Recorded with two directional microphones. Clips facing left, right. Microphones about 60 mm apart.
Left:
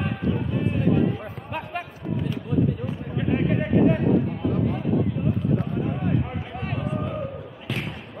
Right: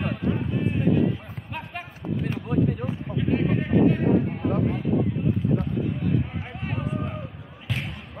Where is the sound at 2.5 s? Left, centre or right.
Right.